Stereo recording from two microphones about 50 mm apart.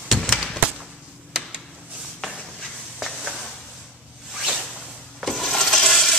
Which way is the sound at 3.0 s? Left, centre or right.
Centre.